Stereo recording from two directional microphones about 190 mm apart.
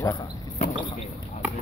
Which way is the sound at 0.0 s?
20° left (ahead or behind).